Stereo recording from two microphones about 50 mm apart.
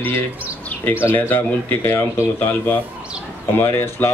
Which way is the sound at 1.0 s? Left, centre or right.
Left.